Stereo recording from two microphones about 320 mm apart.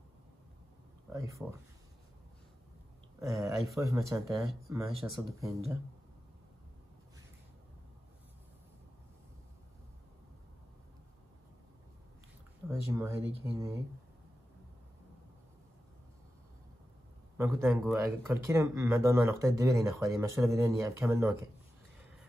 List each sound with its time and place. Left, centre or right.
1.1 s speech: centre
3.2 s speech: centre
12.6 s speech: centre
17.4 s speech: centre